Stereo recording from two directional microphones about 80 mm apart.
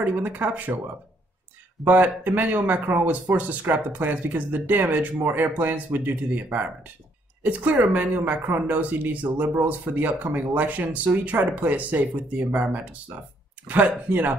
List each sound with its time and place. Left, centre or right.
0.0 s speech: right
1.9 s speech: right